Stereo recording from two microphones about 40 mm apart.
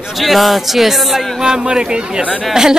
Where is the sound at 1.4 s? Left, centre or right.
Centre.